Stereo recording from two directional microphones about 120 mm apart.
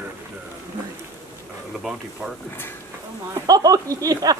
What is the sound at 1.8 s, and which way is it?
Speech, centre (ahead or behind).